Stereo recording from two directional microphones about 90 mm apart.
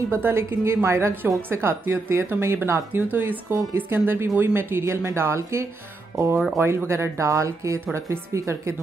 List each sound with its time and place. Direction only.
0.1 s a woman's voice: 30° right (ahead or behind)